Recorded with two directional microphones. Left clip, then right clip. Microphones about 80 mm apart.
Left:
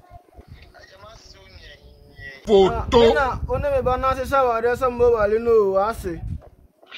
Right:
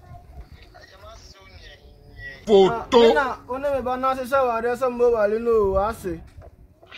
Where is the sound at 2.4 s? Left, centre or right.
Centre.